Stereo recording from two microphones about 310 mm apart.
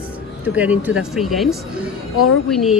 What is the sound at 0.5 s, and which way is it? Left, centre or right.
Speech, centre.